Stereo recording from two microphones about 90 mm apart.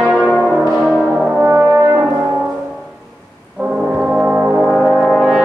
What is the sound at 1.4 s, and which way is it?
Brass instrument, 30° right (ahead or behind).